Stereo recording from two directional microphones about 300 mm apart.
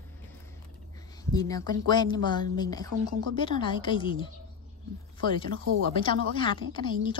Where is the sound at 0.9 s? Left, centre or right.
Centre.